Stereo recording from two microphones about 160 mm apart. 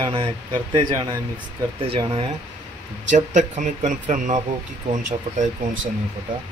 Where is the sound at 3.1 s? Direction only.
50° right (ahead or behind).